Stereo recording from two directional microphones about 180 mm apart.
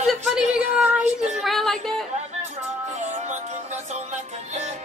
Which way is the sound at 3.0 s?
40° right (ahead or behind).